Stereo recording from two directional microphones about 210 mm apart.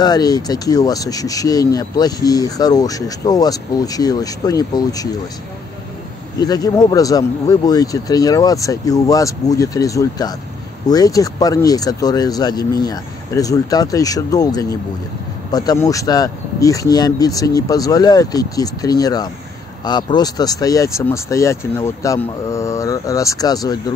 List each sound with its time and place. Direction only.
0.0 s speech: 20° left (ahead or behind)
6.4 s speech: 20° left (ahead or behind)